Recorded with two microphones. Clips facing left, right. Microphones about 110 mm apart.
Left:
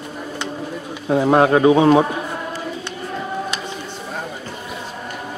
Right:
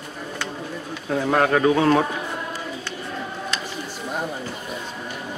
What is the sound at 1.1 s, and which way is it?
Speech, 25° left (ahead or behind).